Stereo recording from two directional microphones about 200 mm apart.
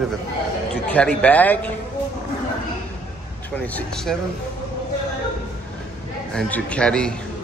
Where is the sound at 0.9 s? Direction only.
5° left (ahead or behind).